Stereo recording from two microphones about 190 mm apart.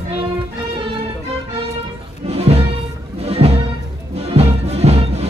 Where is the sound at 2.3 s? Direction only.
35° right (ahead or behind).